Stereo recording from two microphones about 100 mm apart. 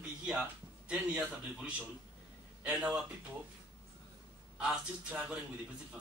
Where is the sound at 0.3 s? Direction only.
5° right (ahead or behind).